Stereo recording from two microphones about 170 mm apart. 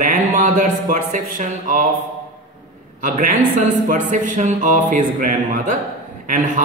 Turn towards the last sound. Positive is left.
turn(degrees=-50)  # may be behind; listen again after turning